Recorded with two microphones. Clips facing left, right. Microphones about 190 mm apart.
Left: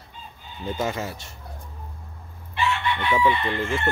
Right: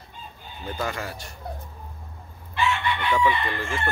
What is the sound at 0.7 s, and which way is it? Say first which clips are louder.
Speech: left 3 dB; 25° left (ahead or behind).